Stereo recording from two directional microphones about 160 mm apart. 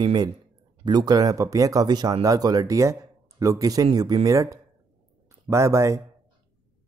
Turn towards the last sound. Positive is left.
turn(degrees=-20)  # may be behind; listen again after turning